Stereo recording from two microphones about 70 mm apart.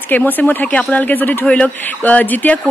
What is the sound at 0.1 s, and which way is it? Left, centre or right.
A woman's voice, left.